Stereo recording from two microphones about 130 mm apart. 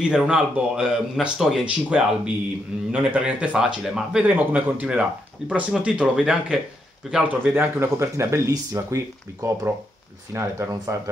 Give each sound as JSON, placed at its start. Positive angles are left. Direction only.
{"t": 0.0, "sound": "a man's voice", "side_deg": -5}